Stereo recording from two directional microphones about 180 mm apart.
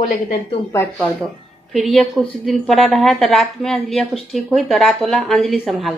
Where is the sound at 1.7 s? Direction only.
Centre (ahead or behind).